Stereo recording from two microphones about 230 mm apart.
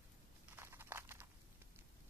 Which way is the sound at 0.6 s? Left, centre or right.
Centre.